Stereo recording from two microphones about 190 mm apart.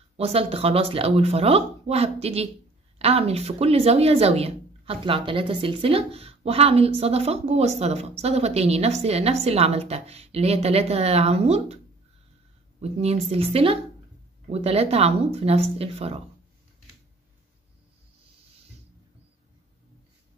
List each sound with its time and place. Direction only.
0.2 s speech: 30° right (ahead or behind)
12.8 s speech: 35° right (ahead or behind)